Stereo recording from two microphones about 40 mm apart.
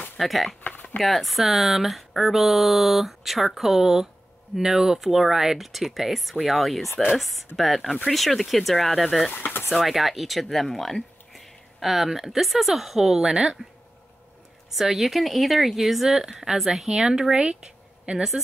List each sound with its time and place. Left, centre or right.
0.2 s speech: centre
0.7 s a sound: left
0.9 s speech: centre
9.0 s speech: centre
9.3 s pigeon: left
9.7 s speech: centre
14.7 s speech: centre
18.1 s speech: right